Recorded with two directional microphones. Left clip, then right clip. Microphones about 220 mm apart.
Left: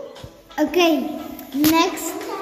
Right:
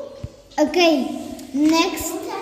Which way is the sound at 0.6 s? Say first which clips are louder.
Right 1 dB; 10° right (ahead or behind).